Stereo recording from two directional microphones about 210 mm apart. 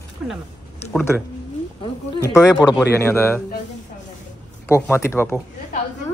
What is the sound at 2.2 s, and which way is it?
A man's voice, 15° left (ahead or behind).